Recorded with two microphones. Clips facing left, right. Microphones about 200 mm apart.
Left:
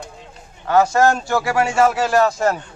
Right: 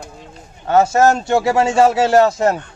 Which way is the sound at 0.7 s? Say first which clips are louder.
Right 2 dB; 25° right (ahead or behind).